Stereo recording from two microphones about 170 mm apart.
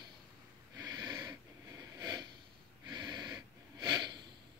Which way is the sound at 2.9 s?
25° right (ahead or behind).